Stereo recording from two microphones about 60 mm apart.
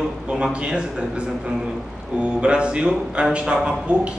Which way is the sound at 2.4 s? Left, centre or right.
Centre.